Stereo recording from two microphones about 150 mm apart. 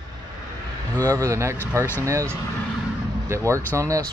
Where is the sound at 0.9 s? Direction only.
20° right (ahead or behind).